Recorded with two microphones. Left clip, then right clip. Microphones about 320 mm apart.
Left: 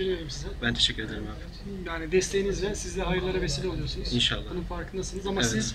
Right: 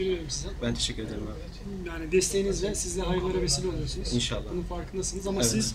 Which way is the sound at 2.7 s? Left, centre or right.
Centre.